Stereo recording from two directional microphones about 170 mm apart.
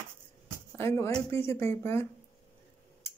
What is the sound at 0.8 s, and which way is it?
Speech, 15° left (ahead or behind).